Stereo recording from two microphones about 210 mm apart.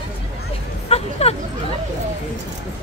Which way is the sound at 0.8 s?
30° left (ahead or behind).